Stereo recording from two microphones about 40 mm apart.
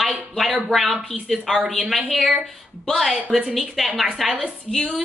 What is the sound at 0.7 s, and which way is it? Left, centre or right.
Speech, centre.